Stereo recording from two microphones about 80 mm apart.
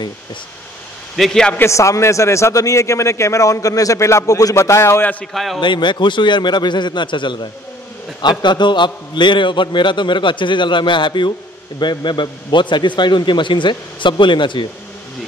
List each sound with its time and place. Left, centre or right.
1.1 s a man's voice: centre
1.7 s a man's voice: left
5.2 s a man's voice: centre
5.6 s a man's voice: left
8.2 s a man's voice: left
11.8 s a man's voice: left